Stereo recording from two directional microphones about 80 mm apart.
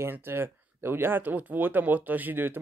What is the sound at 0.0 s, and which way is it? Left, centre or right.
Speech, right.